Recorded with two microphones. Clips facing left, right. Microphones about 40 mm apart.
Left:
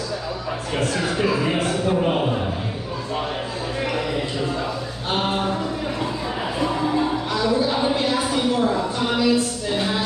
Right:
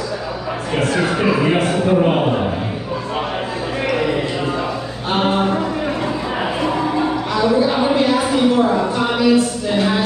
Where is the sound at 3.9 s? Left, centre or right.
Right.